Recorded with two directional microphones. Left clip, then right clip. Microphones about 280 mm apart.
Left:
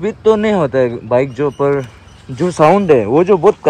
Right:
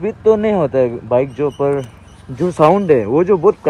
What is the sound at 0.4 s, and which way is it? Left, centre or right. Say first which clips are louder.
Speech: left 1 dB; centre.